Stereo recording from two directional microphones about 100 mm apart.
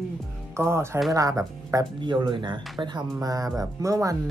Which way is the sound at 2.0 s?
50° right (ahead or behind).